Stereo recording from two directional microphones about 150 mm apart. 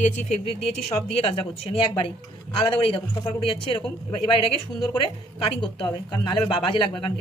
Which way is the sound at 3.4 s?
35° left (ahead or behind).